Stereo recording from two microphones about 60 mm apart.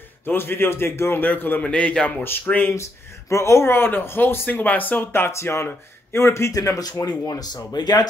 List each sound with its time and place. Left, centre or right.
0.2 s speech: left
1.2 s speech: left
1.6 s a man's voice: centre
2.4 s speech: left
2.7 s a man's voice: left
6.5 s speech: left